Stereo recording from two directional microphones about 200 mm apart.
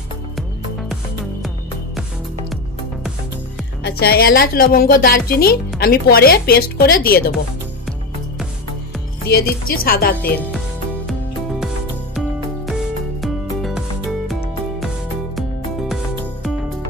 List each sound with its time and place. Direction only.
3.8 s a woman's voice: 50° left (ahead or behind)
9.2 s a woman's voice: 50° left (ahead or behind)
10.3 s speech: 10° left (ahead or behind)
13.2 s music: centre (ahead or behind)